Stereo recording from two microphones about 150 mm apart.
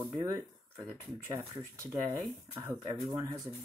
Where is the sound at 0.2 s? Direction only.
20° right (ahead or behind).